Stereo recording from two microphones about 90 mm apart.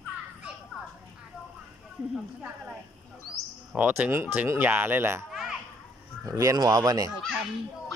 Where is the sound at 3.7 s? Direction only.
20° right (ahead or behind).